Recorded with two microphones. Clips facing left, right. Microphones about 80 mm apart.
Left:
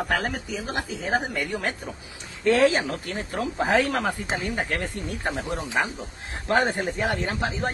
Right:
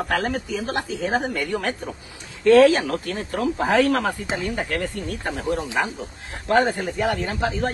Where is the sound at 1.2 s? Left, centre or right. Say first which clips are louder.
Right 3 dB; centre.